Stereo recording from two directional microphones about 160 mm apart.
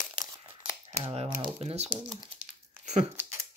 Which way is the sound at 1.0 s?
35° right (ahead or behind).